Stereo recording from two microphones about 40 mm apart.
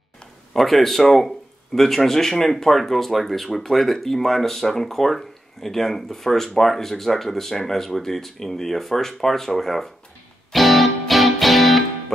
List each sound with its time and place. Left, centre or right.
0.5 s speech: centre
10.5 s music: centre